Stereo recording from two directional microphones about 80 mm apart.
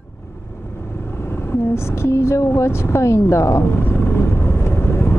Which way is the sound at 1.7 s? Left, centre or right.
Left.